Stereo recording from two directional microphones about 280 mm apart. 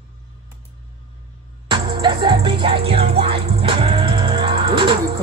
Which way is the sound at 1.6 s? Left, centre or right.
Centre.